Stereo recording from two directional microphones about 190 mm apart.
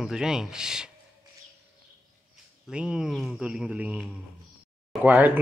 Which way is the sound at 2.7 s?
5° right (ahead or behind).